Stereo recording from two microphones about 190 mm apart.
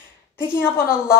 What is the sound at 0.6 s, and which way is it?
Speech, 15° left (ahead or behind).